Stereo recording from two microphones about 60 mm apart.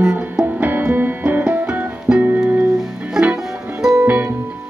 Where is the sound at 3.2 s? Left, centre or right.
Centre.